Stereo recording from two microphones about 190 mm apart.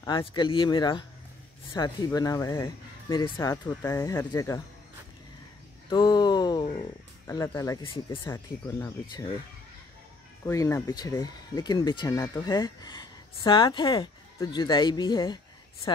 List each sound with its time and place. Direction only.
0.0 s speech: 25° left (ahead or behind)
5.9 s a sound: 20° left (ahead or behind)
7.2 s speech: 15° left (ahead or behind)
8.3 s speech: 15° left (ahead or behind)
10.4 s speech: 15° left (ahead or behind)